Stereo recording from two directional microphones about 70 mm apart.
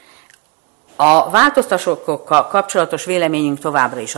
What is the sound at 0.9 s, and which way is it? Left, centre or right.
A man's voice, centre.